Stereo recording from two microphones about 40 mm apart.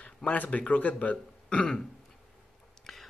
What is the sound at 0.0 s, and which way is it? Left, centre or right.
Speech, left.